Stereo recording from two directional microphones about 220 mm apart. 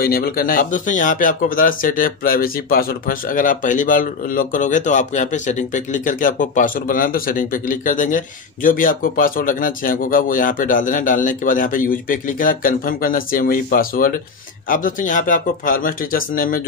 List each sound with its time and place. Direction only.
0.0 s speech: 45° left (ahead or behind)